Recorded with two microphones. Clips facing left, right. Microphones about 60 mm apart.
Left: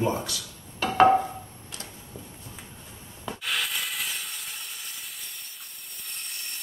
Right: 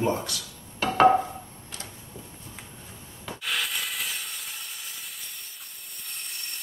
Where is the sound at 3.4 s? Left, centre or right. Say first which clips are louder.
Even; centre.